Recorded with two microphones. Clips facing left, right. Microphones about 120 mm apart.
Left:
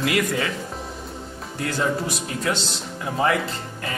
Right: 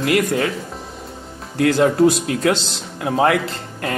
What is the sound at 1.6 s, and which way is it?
Speech, 75° right (ahead or behind).